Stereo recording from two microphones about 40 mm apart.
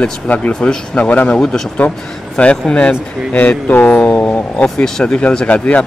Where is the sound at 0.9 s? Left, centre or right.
Left.